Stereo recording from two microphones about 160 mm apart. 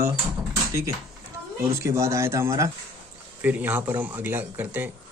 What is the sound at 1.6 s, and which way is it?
A man's voice, 20° right (ahead or behind).